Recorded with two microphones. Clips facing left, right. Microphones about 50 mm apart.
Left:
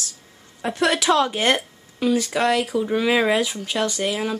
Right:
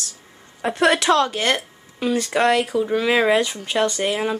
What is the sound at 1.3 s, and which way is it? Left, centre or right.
Speech, centre.